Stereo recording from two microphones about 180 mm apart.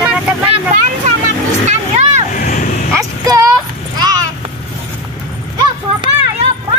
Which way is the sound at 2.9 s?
20° right (ahead or behind).